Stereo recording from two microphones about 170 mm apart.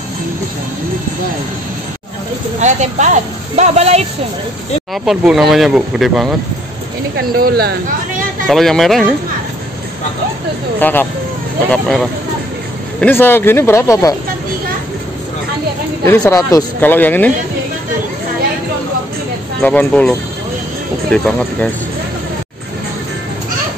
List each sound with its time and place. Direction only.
2.6 s speech: 45° right (ahead or behind)
4.9 s speech: centre (ahead or behind)
7.2 s speech: 65° right (ahead or behind)
8.5 s speech: centre (ahead or behind)
10.8 s speech: 10° left (ahead or behind)
16.1 s speech: 15° left (ahead or behind)
19.6 s speech: 10° left (ahead or behind)